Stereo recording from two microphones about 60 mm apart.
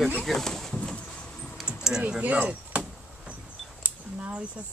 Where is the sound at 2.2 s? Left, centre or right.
Right.